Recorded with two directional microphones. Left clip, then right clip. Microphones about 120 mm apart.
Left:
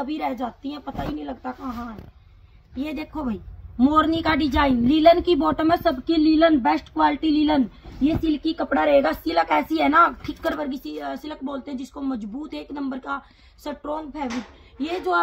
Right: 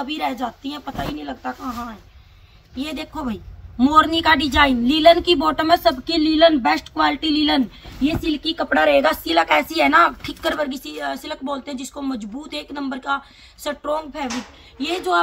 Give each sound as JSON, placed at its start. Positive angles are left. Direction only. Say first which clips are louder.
{"t": 0.0, "sound": "a woman's voice", "louder": "right 3 dB", "side_deg": -10}